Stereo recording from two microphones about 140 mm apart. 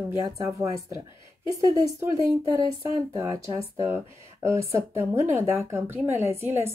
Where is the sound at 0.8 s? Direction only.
30° left (ahead or behind).